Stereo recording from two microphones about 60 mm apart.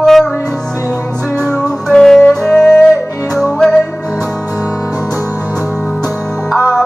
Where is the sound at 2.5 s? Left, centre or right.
Left.